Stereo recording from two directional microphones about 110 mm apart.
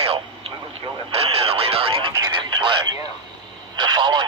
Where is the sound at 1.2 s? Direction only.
60° right (ahead or behind).